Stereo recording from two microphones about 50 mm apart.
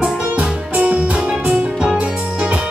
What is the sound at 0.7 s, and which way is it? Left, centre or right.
Music, right.